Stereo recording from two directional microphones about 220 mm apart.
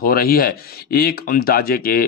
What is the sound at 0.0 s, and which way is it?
Speech, 40° left (ahead or behind).